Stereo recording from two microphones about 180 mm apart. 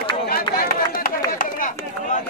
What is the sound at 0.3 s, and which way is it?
Run, 55° left (ahead or behind).